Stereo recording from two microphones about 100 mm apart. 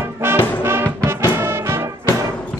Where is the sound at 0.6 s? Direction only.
25° right (ahead or behind).